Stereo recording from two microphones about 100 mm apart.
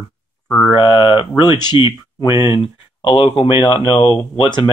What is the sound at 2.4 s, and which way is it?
Speech, 55° left (ahead or behind).